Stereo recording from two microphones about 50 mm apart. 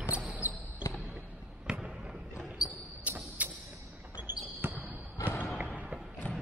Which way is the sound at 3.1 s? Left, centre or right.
Right.